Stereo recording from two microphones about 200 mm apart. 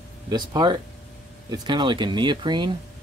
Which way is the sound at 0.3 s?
20° right (ahead or behind).